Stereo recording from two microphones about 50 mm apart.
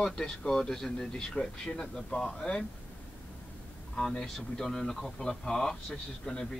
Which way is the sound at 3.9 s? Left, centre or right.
Centre.